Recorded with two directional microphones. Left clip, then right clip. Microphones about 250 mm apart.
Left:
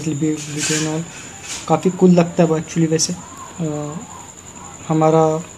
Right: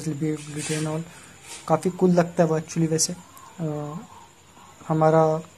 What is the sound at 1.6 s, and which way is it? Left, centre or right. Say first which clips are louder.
Speech: left 6 dB; centre.